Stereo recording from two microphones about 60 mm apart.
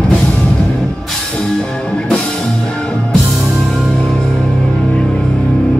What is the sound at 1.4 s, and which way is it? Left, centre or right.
Music, centre.